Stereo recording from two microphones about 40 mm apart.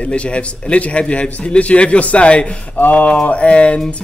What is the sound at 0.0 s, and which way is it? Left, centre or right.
A man's voice, left.